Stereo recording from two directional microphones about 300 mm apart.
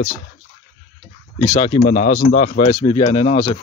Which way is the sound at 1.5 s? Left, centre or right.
Left.